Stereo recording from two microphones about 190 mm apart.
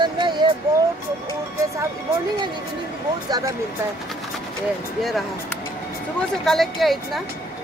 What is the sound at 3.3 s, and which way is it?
Speech, 20° right (ahead or behind).